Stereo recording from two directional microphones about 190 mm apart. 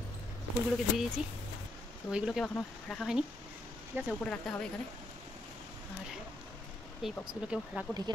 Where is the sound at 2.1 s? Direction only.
Centre (ahead or behind).